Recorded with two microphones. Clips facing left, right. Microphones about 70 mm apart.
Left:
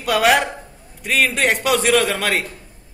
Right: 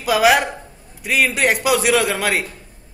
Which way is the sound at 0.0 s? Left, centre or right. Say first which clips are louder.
Right 1 dB; centre.